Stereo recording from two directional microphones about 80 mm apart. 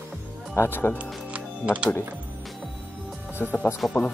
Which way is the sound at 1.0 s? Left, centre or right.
Centre.